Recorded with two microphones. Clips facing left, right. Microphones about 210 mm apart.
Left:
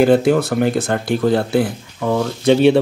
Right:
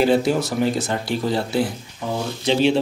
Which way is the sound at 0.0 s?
55° left (ahead or behind).